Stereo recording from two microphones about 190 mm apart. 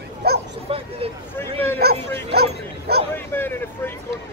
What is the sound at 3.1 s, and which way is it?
Hubbub, 10° left (ahead or behind).